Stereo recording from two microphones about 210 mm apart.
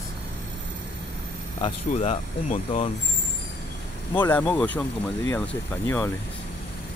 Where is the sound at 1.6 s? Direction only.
30° left (ahead or behind).